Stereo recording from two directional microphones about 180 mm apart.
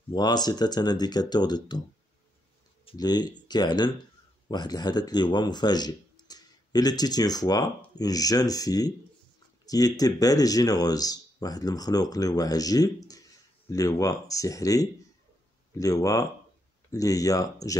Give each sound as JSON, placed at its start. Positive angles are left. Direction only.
{"t": 0.1, "sound": "speech", "side_deg": 25}
{"t": 2.8, "sound": "speech", "side_deg": 25}